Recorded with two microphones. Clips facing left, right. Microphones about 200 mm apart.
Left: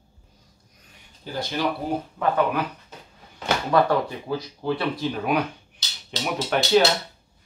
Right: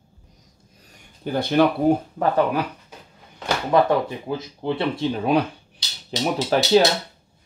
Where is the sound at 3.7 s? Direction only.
20° right (ahead or behind).